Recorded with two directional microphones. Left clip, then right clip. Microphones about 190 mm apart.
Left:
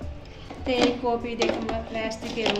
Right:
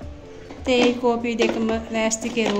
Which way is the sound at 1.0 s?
55° right (ahead or behind).